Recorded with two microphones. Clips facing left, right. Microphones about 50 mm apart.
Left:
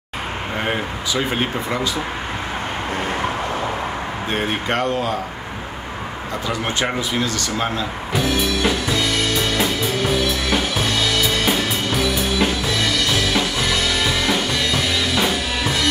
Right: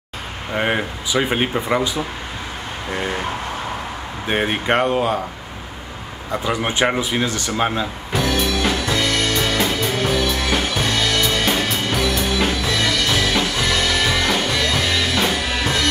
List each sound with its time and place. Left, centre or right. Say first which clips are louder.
0.6 s speech: right 4 dB; centre
4.3 s speech: right 4 dB; centre
6.4 s speech: right 3 dB; centre
8.1 s music: even; centre